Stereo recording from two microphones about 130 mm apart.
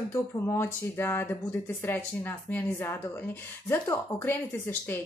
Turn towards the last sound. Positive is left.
turn(degrees=15)  # may be behind; listen again after turning